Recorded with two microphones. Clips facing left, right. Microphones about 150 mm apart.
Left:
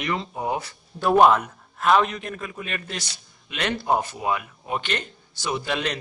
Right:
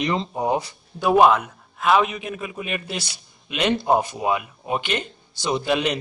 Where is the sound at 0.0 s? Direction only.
25° right (ahead or behind).